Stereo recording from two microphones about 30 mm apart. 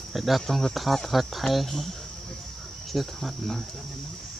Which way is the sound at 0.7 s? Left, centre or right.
Centre.